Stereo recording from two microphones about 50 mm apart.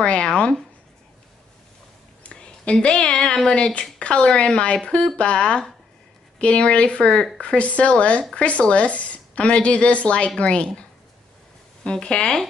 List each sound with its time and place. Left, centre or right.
0.0 s a woman's voice: left
2.2 s a sound: left
3.4 s a woman's voice: centre
11.8 s a woman's voice: centre